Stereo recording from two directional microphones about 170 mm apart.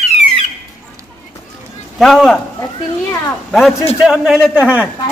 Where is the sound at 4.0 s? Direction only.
Centre (ahead or behind).